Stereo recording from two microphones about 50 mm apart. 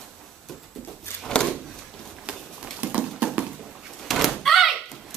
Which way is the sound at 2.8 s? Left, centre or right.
Right.